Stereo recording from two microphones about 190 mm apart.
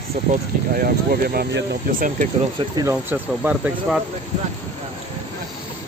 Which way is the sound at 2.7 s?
15° right (ahead or behind).